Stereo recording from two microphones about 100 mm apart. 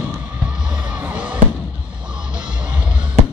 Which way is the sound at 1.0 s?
10° right (ahead or behind).